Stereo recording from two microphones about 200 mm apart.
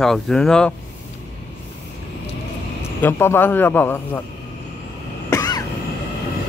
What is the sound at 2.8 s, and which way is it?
A man's voice, 10° left (ahead or behind).